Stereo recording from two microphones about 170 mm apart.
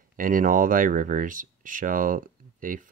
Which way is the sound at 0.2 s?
55° right (ahead or behind).